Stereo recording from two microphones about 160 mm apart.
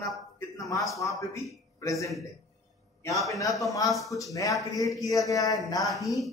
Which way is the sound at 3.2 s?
20° left (ahead or behind).